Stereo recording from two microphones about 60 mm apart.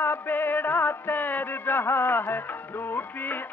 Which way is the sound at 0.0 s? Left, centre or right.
Left.